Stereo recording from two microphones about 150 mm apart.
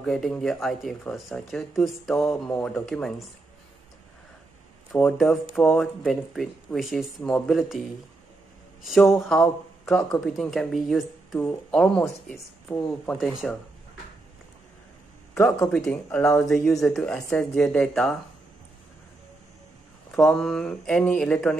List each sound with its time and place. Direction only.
0.0 s speech: 5° left (ahead or behind)
2.5 s speech: 10° left (ahead or behind)
4.9 s speech: centre (ahead or behind)
9.1 s speech: centre (ahead or behind)
15.3 s speech: 15° left (ahead or behind)
20.1 s speech: centre (ahead or behind)